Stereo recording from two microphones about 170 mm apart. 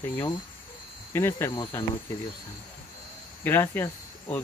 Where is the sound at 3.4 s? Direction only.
15° left (ahead or behind).